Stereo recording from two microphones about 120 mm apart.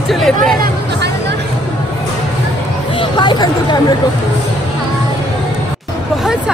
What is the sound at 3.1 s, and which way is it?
Speech, 40° left (ahead or behind).